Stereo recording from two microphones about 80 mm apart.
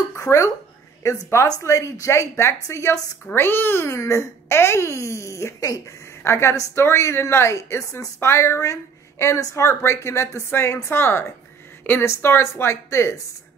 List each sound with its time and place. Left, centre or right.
0.1 s a sound: left
1.0 s a woman's voice: left
6.2 s a woman's voice: left